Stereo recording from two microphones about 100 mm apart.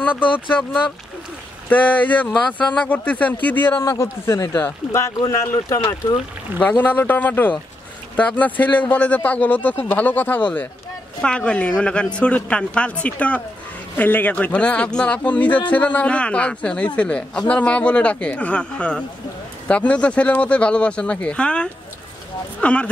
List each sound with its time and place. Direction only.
1.7 s a man's voice: 15° left (ahead or behind)
4.9 s speech: 30° left (ahead or behind)
6.6 s a man's voice: 15° left (ahead or behind)